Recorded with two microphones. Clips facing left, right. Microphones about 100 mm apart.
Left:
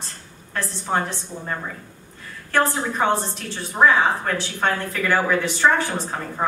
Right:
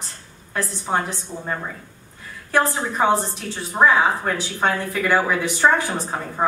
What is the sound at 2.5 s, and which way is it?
A woman's voice, 10° right (ahead or behind).